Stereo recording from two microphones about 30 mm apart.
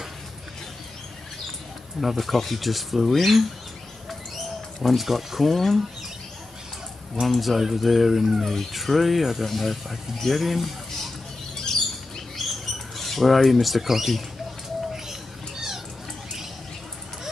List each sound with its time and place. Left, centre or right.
2.0 s speech: centre
4.8 s speech: centre
7.2 s speech: centre
11.5 s a sound: centre
12.4 s rodents: centre
15.0 s cat: centre